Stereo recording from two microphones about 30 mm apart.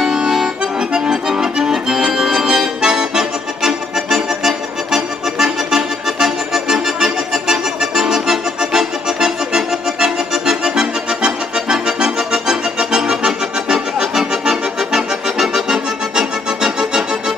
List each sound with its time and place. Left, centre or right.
0.0 s accordion: centre